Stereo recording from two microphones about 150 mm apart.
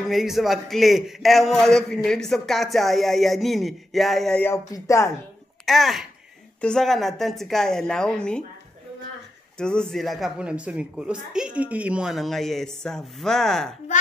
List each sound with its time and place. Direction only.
0.1 s a man's voice: centre (ahead or behind)
4.5 s speech: 20° left (ahead or behind)
5.7 s a man's voice: centre (ahead or behind)
9.6 s a man's voice: 5° left (ahead or behind)